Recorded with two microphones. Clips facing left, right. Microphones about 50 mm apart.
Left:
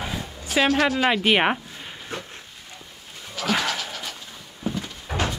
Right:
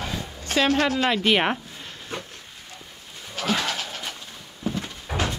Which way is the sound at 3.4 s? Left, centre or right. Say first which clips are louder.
Even; right.